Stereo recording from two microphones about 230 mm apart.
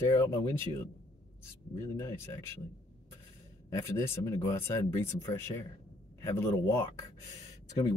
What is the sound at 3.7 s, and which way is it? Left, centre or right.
Speech, centre.